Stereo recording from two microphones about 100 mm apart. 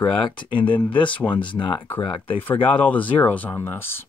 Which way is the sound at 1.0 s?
55° left (ahead or behind).